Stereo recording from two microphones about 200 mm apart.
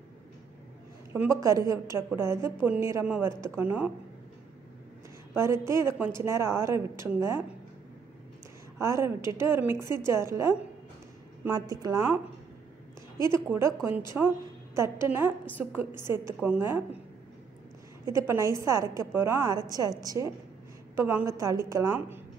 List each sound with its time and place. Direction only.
1.1 s a woman's voice: 10° right (ahead or behind)
5.3 s a woman's voice: 15° right (ahead or behind)
8.7 s a woman's voice: 15° right (ahead or behind)
13.3 s a woman's voice: 15° right (ahead or behind)
18.0 s a woman's voice: 15° right (ahead or behind)